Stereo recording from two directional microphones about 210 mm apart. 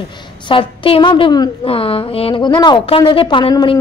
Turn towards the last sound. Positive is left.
turn(degrees=20)  # may be behind; listen again after turning